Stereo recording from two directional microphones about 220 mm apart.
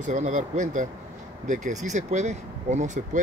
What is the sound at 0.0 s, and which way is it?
Speech, 35° right (ahead or behind).